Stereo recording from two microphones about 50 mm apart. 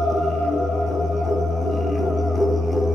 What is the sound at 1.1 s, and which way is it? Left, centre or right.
Music, centre.